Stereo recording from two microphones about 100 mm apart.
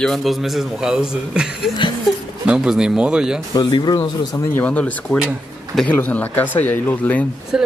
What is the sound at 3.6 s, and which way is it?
Speech, 50° left (ahead or behind).